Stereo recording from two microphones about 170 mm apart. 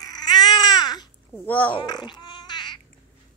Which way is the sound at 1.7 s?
25° left (ahead or behind).